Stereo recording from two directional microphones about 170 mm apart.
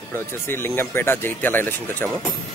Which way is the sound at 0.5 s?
15° left (ahead or behind).